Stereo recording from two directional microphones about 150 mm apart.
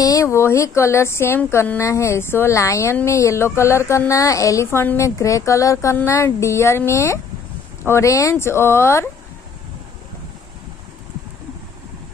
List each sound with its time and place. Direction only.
0.0 s speech: 20° left (ahead or behind)